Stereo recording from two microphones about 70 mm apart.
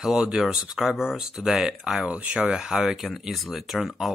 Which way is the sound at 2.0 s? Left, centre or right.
Right.